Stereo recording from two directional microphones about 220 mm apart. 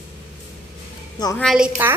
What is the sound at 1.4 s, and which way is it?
Speech, 5° right (ahead or behind).